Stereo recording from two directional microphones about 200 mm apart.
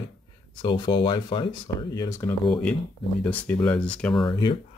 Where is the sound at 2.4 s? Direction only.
5° left (ahead or behind).